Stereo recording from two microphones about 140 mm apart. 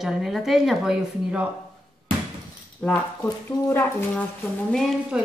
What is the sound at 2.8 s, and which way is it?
Speech, 10° left (ahead or behind).